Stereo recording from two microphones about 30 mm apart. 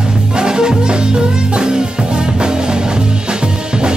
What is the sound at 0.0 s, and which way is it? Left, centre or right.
Music, right.